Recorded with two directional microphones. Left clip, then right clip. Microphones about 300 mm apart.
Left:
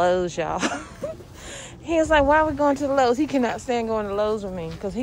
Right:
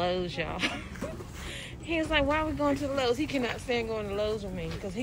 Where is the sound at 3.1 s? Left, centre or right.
Left.